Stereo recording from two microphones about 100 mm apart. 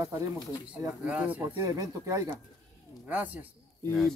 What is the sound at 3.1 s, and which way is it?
Speech, 15° right (ahead or behind).